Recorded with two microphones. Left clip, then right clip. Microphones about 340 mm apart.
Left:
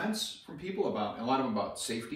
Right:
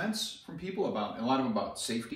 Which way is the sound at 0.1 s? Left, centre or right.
Centre.